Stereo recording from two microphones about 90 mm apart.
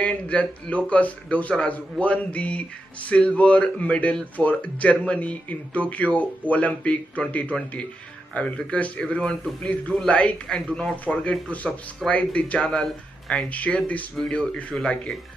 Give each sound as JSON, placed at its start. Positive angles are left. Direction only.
{"t": 0.0, "sound": "a man's voice", "side_deg": 15}